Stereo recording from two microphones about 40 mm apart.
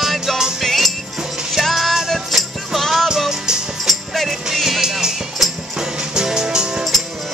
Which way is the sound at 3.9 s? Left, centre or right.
Centre.